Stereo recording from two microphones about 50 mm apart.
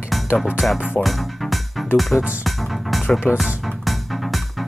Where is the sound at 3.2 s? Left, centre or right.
Left.